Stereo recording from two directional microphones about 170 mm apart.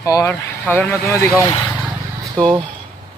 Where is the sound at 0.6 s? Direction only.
10° left (ahead or behind).